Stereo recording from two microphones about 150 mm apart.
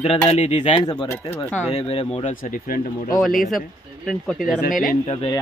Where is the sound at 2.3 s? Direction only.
60° left (ahead or behind).